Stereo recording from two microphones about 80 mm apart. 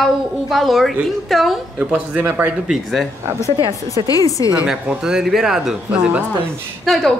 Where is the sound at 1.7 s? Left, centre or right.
Centre.